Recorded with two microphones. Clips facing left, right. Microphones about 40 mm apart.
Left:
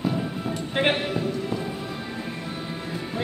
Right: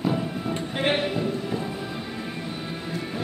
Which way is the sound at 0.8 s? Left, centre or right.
Centre.